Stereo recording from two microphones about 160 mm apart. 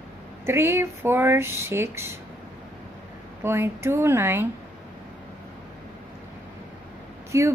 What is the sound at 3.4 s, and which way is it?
Speech, 15° right (ahead or behind).